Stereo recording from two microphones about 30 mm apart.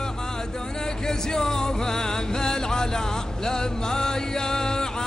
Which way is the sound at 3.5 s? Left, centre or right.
Left.